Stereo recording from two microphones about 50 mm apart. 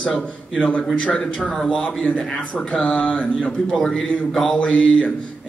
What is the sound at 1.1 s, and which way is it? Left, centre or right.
Speech, centre.